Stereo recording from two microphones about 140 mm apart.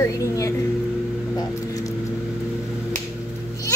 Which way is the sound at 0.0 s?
20° left (ahead or behind).